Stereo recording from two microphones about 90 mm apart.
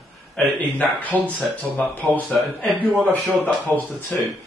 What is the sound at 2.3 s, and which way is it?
Speech, 5° left (ahead or behind).